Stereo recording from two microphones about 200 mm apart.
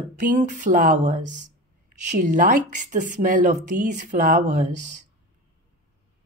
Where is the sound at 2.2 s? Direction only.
40° right (ahead or behind).